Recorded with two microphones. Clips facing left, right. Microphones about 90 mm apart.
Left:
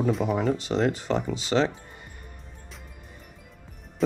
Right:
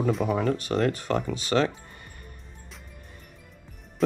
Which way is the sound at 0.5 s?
20° left (ahead or behind).